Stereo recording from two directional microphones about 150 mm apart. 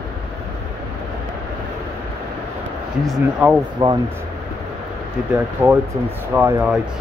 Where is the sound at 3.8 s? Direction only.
35° right (ahead or behind).